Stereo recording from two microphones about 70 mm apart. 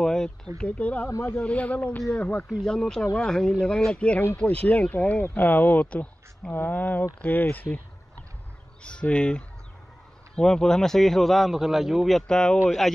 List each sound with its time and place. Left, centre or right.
0.0 s a sound: centre
0.6 s speech: centre
8.8 s a man's voice: centre